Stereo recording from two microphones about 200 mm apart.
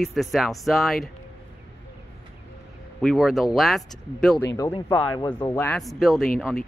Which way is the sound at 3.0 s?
Centre (ahead or behind).